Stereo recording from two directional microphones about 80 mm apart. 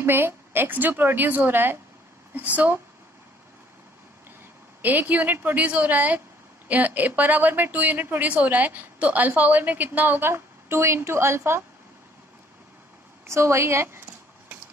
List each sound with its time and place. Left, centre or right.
0.0 s a woman's voice: right
4.8 s a woman's voice: right
13.3 s a woman's voice: right